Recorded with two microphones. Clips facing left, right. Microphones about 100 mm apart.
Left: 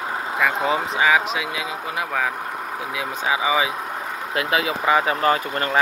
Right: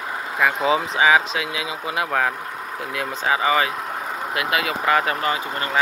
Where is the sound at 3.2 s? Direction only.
5° left (ahead or behind).